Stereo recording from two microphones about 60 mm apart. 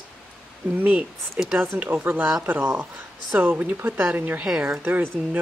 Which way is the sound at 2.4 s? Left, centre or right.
Right.